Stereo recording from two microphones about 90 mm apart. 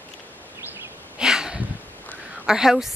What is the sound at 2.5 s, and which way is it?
Speech, 5° right (ahead or behind).